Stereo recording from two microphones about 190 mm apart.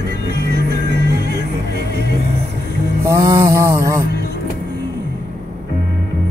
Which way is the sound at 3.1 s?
15° right (ahead or behind).